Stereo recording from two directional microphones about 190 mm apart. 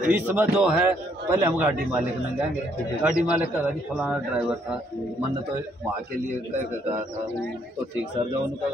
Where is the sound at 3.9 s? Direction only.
5° right (ahead or behind).